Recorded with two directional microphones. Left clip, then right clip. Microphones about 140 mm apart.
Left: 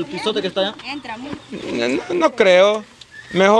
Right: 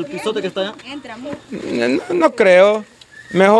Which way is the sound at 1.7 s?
35° right (ahead or behind).